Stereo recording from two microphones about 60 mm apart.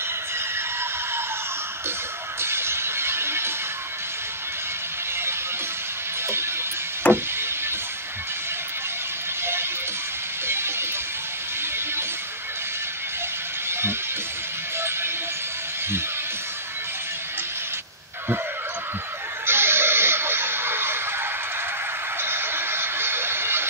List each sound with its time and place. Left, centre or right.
2.4 s shatter: right
6.2 s music: right
7.1 s a sound: right
9.4 s music: right
13.7 s music: right
19.4 s a sound: right